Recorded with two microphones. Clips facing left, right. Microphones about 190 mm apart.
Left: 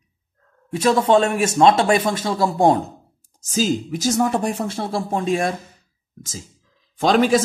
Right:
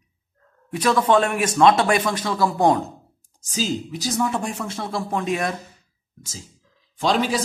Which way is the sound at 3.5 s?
45° left (ahead or behind).